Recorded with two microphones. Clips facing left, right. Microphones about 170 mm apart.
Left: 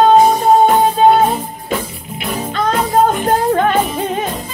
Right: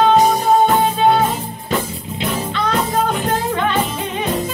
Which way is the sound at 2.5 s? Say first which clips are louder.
Left 6 dB; 45° left (ahead or behind).